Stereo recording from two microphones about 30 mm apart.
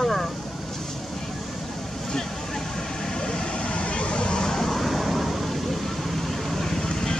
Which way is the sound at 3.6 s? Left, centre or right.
Left.